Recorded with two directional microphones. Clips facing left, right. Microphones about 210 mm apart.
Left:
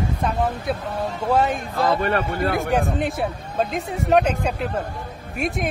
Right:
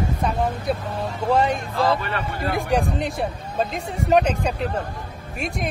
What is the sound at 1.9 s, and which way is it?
Speech, 50° left (ahead or behind).